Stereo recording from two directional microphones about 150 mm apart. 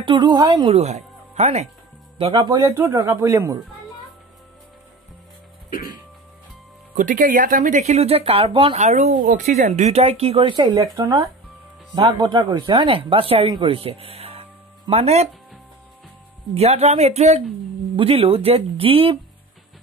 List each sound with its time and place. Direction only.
0.0 s speech: 35° right (ahead or behind)
0.7 s speech: 45° right (ahead or behind)
2.1 s speech: 35° right (ahead or behind)
2.5 s speech: 20° right (ahead or behind)
7.0 s speech: 60° right (ahead or behind); by 8.7 s 35° right (ahead or behind)
8.7 s speech: 50° right (ahead or behind)
16.5 s speech: 45° right (ahead or behind)